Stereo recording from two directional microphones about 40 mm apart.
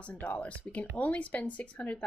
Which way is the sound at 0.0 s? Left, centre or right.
Left.